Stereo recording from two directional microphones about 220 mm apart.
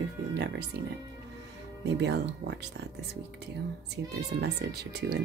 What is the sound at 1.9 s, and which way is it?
Speech, 50° right (ahead or behind).